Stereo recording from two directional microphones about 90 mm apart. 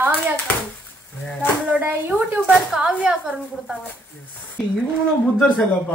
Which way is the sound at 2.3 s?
Centre (ahead or behind).